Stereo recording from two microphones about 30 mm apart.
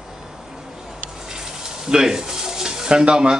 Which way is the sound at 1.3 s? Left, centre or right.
Centre.